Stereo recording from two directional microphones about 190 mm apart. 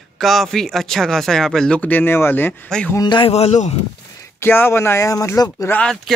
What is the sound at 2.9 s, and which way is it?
Speech, 25° left (ahead or behind).